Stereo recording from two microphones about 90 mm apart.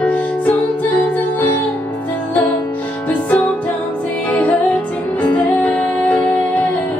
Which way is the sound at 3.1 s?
20° left (ahead or behind).